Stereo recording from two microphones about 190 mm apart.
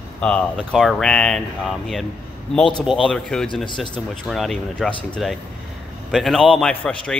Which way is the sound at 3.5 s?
25° left (ahead or behind).